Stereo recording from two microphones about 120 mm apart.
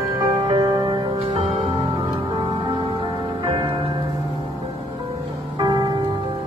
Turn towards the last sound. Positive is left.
turn(degrees=-35)  # may be behind; listen again after turning